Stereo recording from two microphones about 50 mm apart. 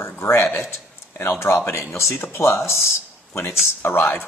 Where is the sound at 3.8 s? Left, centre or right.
Left.